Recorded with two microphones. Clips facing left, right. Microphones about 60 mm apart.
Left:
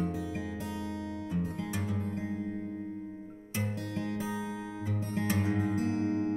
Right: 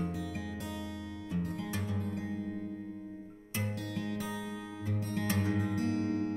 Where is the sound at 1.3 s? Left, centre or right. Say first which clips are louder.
Even; centre.